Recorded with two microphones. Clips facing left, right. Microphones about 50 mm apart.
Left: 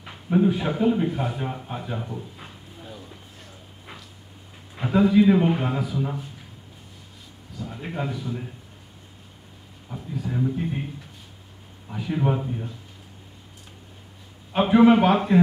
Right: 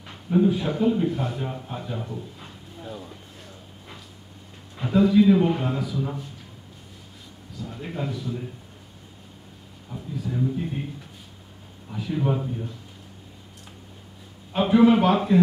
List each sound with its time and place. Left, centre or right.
0.0 s a sound: centre
0.5 s a man's voice: centre
4.7 s a man's voice: centre
7.5 s a man's voice: centre
9.9 s a man's voice: centre
10.3 s a man's voice: centre
11.9 s a man's voice: centre
14.5 s a man's voice: centre